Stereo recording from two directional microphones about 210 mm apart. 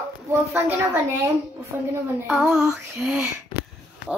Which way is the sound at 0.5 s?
10° right (ahead or behind).